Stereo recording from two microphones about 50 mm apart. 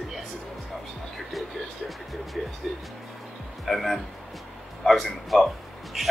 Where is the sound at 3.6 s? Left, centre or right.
Centre.